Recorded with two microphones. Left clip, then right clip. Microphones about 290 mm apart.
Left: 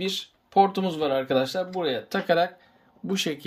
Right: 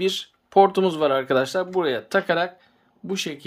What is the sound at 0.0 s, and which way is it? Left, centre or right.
Speech, centre.